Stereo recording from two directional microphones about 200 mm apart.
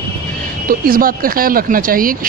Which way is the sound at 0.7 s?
45° right (ahead or behind).